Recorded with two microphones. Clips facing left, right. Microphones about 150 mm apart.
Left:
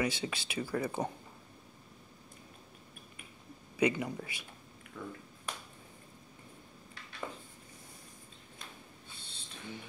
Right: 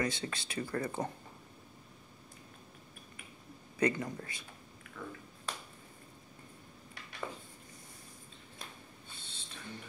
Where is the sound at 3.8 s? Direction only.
10° left (ahead or behind).